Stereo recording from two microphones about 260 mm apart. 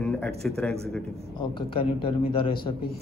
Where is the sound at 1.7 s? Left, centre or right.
Left.